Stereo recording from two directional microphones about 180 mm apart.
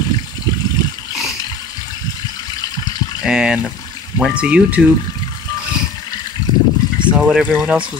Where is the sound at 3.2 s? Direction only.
5° right (ahead or behind).